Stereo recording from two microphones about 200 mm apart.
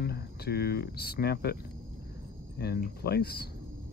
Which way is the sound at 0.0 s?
55° left (ahead or behind).